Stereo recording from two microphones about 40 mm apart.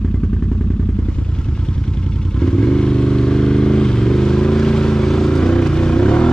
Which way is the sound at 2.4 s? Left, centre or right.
Centre.